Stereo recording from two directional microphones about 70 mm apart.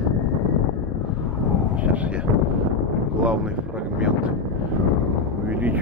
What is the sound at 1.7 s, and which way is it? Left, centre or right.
Vehicle, right.